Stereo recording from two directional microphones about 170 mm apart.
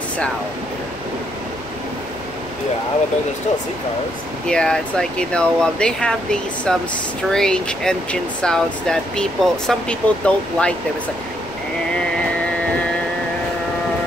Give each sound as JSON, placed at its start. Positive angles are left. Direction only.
{"t": 4.5, "sound": "speech", "side_deg": 5}